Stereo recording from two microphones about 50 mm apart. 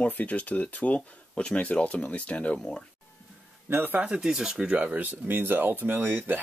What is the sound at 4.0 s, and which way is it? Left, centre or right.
Speech, centre.